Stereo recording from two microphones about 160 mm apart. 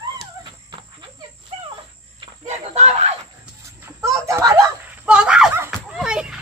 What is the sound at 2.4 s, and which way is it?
Chicken, 45° right (ahead or behind).